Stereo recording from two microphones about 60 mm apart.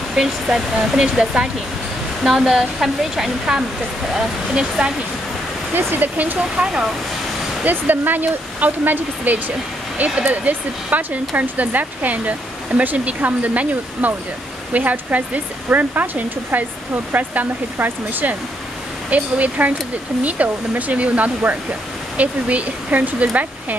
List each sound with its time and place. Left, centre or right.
0.1 s speech: centre
2.2 s speech: centre
5.8 s speech: right
6.1 s speech: right
6.5 s speech: centre
7.6 s speech: right